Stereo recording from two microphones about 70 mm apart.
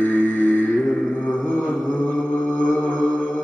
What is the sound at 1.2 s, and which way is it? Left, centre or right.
Mantra, centre.